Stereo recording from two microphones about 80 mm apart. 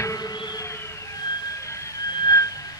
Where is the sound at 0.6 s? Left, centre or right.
Left.